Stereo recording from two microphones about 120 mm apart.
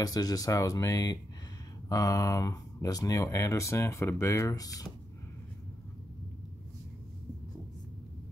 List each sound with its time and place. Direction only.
0.0 s speech: 30° left (ahead or behind)